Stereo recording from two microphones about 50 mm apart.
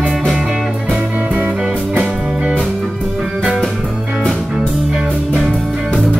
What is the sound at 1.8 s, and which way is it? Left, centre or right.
Music, centre.